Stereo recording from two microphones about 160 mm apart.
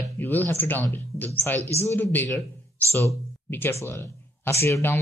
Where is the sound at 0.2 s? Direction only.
10° left (ahead or behind).